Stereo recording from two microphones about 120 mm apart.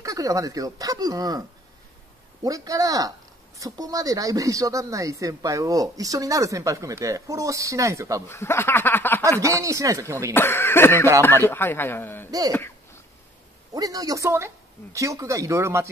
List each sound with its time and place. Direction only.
0.0 s speech: 30° right (ahead or behind)
2.4 s speech: 30° right (ahead or behind)
8.3 s a sound: 20° left (ahead or behind)
9.4 s speech: 25° right (ahead or behind)
10.3 s a man's voice: 20° left (ahead or behind)
12.3 s speech: 30° right (ahead or behind)
13.7 s speech: 30° right (ahead or behind)